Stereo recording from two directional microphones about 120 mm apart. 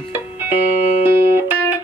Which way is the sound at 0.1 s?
15° right (ahead or behind).